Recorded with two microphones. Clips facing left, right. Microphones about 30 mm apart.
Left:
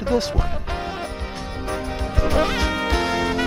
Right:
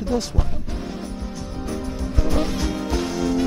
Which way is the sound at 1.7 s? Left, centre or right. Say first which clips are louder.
Left 2 dB; left.